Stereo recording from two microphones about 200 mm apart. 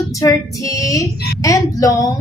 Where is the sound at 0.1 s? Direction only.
15° left (ahead or behind).